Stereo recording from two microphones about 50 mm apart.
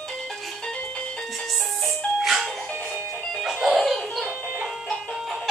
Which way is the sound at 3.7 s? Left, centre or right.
Centre.